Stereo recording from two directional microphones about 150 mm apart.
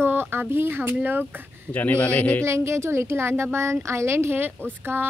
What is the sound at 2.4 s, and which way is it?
Speech, 20° right (ahead or behind).